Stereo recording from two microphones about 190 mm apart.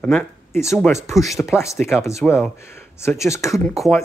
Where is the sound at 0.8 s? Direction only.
15° left (ahead or behind).